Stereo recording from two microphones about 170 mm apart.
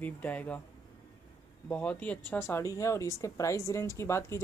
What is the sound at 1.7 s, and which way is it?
Speech, 10° left (ahead or behind).